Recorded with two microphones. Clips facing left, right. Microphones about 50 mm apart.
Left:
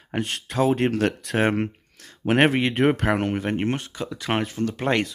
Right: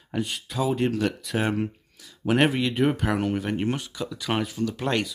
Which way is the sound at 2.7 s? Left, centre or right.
Left.